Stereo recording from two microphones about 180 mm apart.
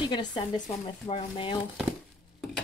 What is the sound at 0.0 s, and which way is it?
Speech, 25° left (ahead or behind).